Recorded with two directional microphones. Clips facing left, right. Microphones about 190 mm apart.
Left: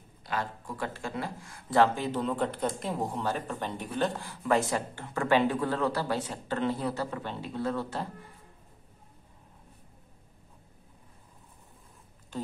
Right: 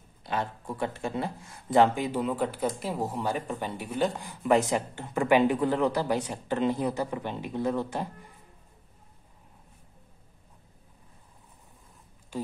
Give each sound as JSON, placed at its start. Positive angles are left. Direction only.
{"t": 0.2, "sound": "speech", "side_deg": -25}